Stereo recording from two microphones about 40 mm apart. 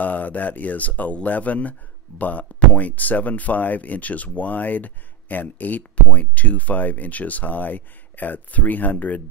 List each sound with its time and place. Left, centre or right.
0.0 s speech: left